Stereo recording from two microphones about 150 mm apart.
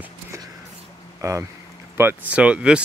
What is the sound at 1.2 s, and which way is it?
Speech, 20° right (ahead or behind).